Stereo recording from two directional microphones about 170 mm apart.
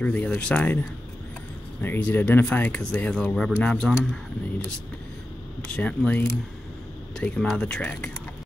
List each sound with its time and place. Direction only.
0.0 s speech: 10° left (ahead or behind)
1.8 s speech: 10° left (ahead or behind)
5.7 s speech: 5° left (ahead or behind)